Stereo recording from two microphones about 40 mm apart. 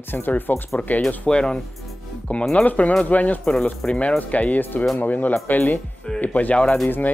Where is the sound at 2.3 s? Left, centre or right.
Left.